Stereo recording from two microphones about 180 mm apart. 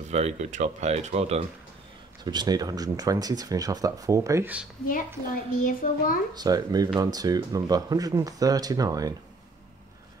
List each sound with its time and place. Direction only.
0.1 s speech: 40° right (ahead or behind)
2.2 s speech: 20° right (ahead or behind)
4.8 s a woman's voice: 50° left (ahead or behind)
6.3 s speech: 20° right (ahead or behind)